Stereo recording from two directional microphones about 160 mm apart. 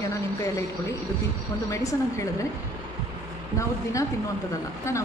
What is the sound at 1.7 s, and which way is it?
Speech, 20° left (ahead or behind).